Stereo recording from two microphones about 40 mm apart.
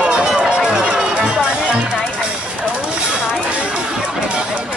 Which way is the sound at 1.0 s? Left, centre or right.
Right.